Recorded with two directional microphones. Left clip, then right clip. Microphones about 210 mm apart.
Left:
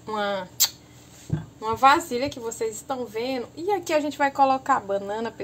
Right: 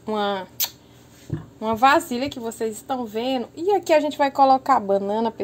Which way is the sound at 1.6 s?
40° right (ahead or behind).